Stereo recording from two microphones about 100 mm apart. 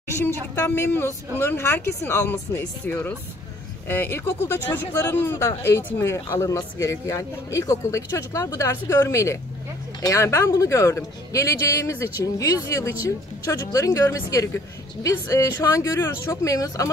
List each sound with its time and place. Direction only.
0.2 s speech: 20° left (ahead or behind); by 16.9 s 35° left (ahead or behind)